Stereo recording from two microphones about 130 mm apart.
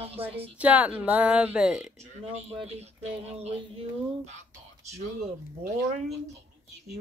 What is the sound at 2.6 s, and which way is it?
Speech, 55° right (ahead or behind).